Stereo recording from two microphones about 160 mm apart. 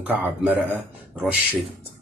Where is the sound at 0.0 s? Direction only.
10° right (ahead or behind).